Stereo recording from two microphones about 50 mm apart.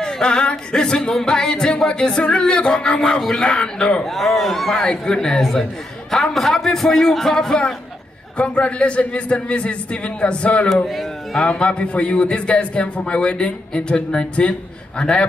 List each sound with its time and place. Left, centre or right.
0.0 s singing: centre
4.0 s speech: centre
4.8 s singing: centre
8.4 s a man's voice: left